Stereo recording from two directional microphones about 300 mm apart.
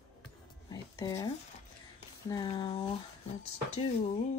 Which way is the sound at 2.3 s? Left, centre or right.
Centre.